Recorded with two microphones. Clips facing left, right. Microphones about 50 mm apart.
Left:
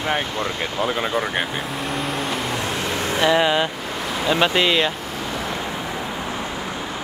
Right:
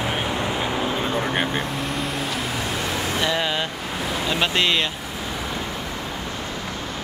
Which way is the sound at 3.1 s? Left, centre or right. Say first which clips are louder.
Left 8 dB; centre.